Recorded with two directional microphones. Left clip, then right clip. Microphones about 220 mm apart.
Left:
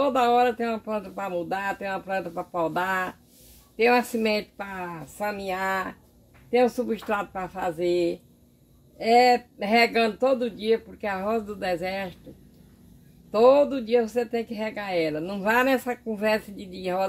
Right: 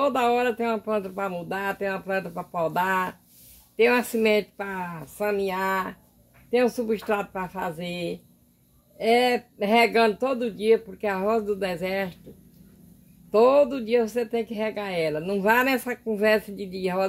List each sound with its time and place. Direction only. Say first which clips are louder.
0.0 s speech: left 2 dB; 35° right (ahead or behind)
13.3 s speech: even; 35° right (ahead or behind)